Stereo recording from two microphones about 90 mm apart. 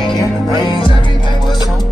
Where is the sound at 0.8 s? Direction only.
65° left (ahead or behind).